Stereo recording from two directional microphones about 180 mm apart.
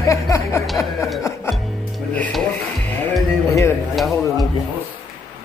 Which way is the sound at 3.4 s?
15° left (ahead or behind).